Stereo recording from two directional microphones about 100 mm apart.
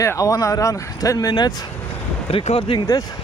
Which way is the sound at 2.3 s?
80° left.